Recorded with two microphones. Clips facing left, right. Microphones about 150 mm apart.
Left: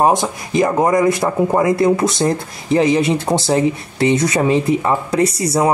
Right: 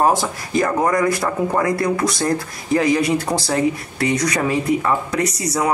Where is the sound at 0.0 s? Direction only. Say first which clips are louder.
Left 3 dB; 20° left (ahead or behind).